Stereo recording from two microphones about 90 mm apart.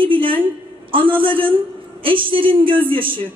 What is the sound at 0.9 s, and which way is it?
A woman's voice, 70° right (ahead or behind).